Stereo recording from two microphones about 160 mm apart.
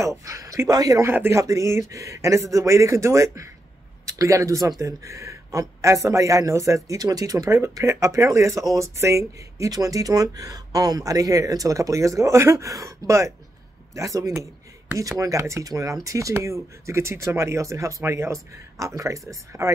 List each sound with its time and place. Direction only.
0.0 s speech: 20° right (ahead or behind)